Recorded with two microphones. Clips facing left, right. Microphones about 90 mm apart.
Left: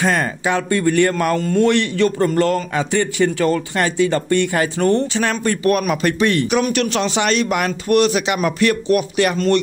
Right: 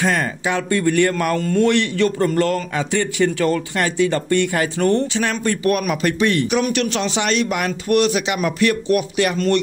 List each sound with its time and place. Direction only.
0.0 s a man's voice: 35° left (ahead or behind)
5.2 s speech: 45° left (ahead or behind)